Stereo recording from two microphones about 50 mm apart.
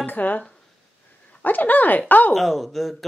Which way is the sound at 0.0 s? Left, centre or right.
Left.